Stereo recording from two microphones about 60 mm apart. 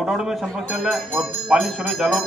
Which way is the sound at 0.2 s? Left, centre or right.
Centre.